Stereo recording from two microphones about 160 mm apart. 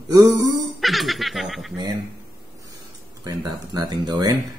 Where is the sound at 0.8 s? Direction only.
Centre (ahead or behind).